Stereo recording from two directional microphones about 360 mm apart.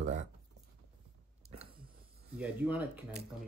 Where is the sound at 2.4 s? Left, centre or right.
Centre.